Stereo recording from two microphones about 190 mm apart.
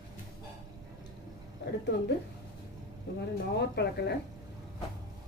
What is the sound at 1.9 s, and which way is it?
Speech, 65° left (ahead or behind).